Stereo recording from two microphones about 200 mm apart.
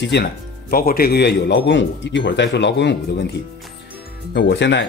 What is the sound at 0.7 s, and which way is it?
Speech, 45° left (ahead or behind).